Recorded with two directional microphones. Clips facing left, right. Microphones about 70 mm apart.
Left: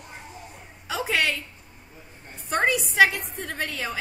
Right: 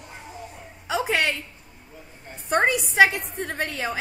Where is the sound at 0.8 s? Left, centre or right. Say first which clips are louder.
Right 2 dB; centre.